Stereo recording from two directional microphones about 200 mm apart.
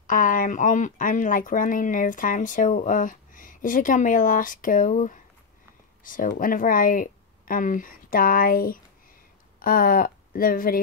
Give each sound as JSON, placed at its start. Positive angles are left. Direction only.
{"t": 0.0, "sound": "speech", "side_deg": 40}